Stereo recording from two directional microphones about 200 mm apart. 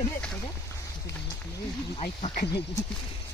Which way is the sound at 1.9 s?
30° left (ahead or behind).